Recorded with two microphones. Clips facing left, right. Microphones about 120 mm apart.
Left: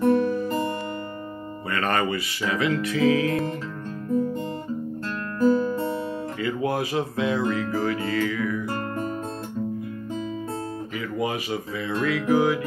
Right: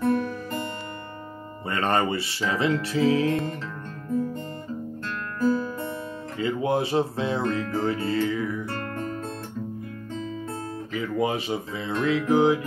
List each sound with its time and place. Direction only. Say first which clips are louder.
0.0 s music: left 4 dB; 15° left (ahead or behind)
1.7 s music: right 1 dB; 25° right (ahead or behind)
5.4 s music: left 4 dB; centre (ahead or behind)
6.4 s music: right 2 dB; 25° right (ahead or behind)
8.6 s music: left 3 dB; 20° left (ahead or behind)
11.0 s music: right 3 dB; 25° right (ahead or behind)